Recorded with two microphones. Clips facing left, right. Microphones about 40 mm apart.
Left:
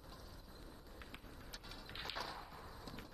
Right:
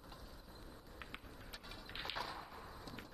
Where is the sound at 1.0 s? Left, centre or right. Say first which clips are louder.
Right 4 dB; right.